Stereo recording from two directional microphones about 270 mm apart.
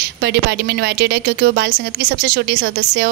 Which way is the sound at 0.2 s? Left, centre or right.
Right.